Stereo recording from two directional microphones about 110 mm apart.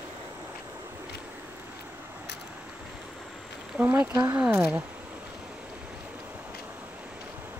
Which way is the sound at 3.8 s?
20° right (ahead or behind).